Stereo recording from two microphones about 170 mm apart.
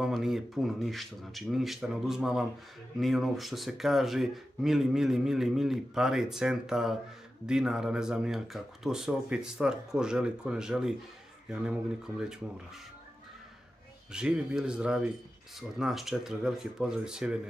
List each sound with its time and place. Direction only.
0.0 s speech: centre (ahead or behind)
14.1 s speech: 5° right (ahead or behind)